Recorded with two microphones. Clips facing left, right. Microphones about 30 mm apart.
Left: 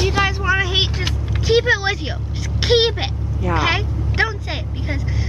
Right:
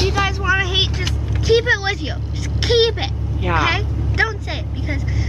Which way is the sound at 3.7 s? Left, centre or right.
Centre.